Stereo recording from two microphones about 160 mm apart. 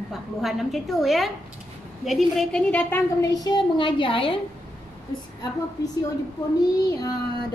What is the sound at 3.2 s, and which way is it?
A woman's voice, 25° left (ahead or behind).